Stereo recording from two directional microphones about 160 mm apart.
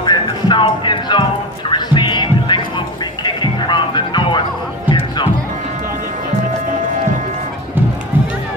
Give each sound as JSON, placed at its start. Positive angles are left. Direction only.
{"t": 0.0, "sound": "music", "side_deg": 30}